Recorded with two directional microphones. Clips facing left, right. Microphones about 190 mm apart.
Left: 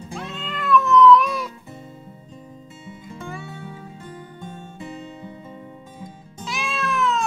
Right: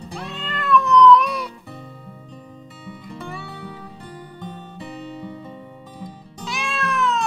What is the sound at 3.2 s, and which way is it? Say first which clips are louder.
Music: even; 65° right (ahead or behind).